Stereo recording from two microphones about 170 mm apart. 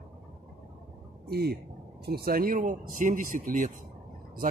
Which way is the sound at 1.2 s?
65° right (ahead or behind).